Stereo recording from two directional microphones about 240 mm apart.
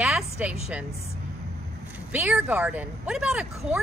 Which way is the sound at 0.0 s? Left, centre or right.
Centre.